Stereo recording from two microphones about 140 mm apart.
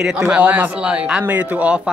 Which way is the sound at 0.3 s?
10° right (ahead or behind).